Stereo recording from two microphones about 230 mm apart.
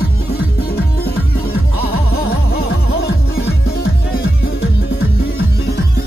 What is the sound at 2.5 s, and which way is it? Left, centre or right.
Music, left.